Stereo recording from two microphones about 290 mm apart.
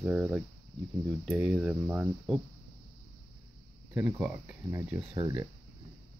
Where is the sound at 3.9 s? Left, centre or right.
Centre.